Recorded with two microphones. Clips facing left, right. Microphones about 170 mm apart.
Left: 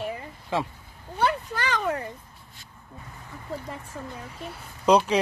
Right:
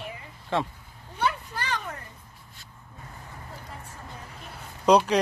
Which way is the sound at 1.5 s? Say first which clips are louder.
Left 6 dB; 90° left.